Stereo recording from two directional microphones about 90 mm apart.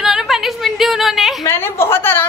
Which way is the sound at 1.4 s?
25° left (ahead or behind).